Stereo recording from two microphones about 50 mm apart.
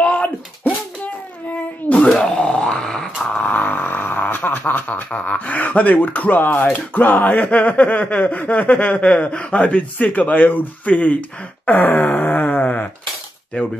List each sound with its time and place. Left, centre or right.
0.1 s a sound: left; by 3.1 s centre
3.3 s snoring: left
5.1 s speech: left
12.3 s wail: left